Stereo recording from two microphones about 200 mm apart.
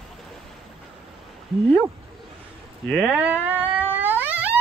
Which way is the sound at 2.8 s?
5° right (ahead or behind).